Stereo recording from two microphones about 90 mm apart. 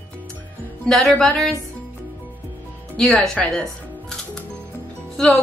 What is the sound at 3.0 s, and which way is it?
Speech, 10° left (ahead or behind).